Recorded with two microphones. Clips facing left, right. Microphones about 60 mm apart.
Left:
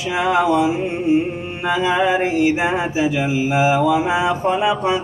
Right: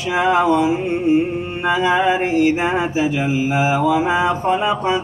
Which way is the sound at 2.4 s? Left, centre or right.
Centre.